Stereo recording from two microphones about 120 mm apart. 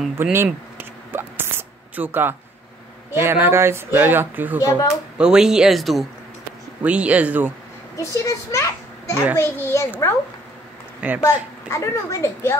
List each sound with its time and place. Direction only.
0.2 s a sound: 20° right (ahead or behind)
2.0 s speech: 15° right (ahead or behind)
4.6 s speech: 30° left (ahead or behind)
5.1 s speech: 5° right (ahead or behind)
6.8 s speech: 10° right (ahead or behind)
7.9 s a child's voice: 25° left (ahead or behind)
11.1 s speech: 25° left (ahead or behind)